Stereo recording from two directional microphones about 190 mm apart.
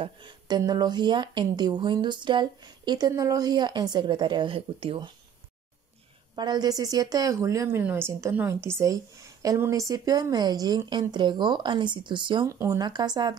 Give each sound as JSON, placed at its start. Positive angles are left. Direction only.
{"t": 0.0, "sound": "a woman's voice", "side_deg": -25}
{"t": 6.3, "sound": "a woman's voice", "side_deg": -20}